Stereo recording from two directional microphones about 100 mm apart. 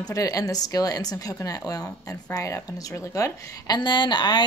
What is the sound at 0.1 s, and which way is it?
Speech, 35° left (ahead or behind).